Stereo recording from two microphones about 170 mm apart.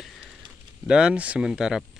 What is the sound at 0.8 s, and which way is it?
Speech, 5° right (ahead or behind).